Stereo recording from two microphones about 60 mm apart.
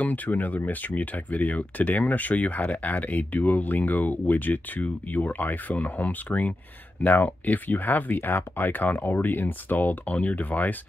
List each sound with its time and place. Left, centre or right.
0.0 s speech: left